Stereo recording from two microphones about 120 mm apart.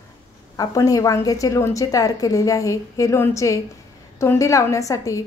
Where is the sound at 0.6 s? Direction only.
30° left (ahead or behind).